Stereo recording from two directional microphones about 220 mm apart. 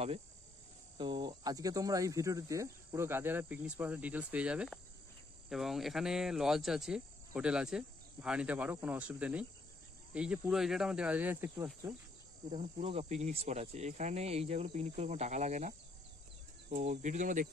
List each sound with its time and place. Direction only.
0.9 s speech: 20° right (ahead or behind)
12.4 s speech: 25° right (ahead or behind)
16.9 s speech: 35° right (ahead or behind)